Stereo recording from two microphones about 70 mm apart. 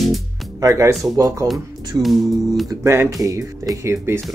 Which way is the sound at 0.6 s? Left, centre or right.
Right.